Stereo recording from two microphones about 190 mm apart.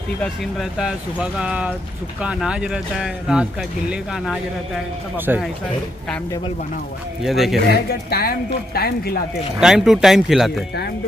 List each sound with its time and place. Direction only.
0.2 s speech: centre (ahead or behind)
7.2 s speech: centre (ahead or behind)
7.7 s a woman's voice: 55° left (ahead or behind)
9.6 s speech: centre (ahead or behind)